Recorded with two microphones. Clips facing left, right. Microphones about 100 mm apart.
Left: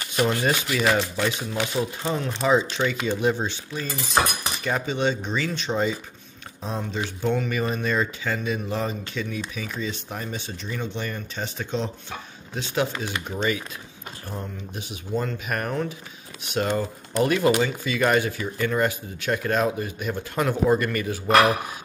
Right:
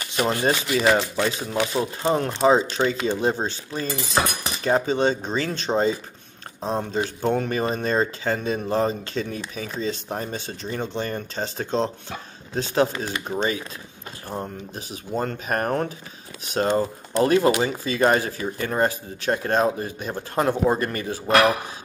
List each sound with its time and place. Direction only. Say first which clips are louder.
0.2 s speech: right 1 dB; 35° right (ahead or behind)
16.4 s speech: right 3 dB; 35° right (ahead or behind)